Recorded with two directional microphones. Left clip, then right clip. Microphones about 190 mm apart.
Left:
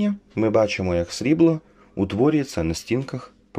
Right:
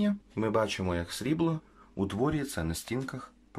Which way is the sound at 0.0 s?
5° left (ahead or behind).